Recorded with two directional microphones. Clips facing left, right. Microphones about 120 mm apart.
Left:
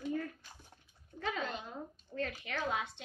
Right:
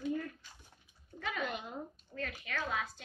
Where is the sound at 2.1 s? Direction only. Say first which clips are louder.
Left 2 dB; 25° left (ahead or behind).